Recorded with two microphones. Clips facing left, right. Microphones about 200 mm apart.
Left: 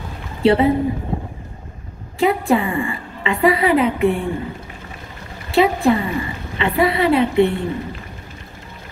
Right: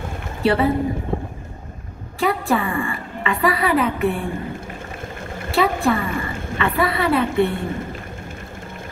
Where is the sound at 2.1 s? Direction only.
20° left (ahead or behind).